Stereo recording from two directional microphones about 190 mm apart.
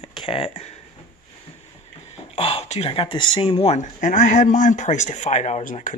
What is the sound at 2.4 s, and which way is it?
Speech, 30° left (ahead or behind).